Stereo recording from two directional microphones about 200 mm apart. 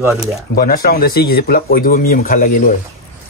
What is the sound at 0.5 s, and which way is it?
Speech, 45° left (ahead or behind).